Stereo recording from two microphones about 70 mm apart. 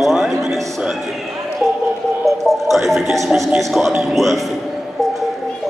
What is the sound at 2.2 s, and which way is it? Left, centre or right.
A man's voice, centre.